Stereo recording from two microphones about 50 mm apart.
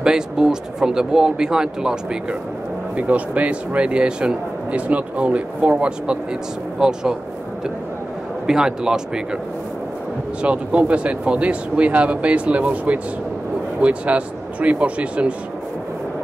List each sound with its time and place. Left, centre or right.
0.0 s speech: centre
3.0 s speech: right; by 7.2 s centre
8.5 s speech: centre
10.4 s speech: right